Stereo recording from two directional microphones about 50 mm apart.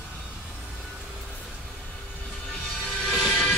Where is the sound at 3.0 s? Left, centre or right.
Centre.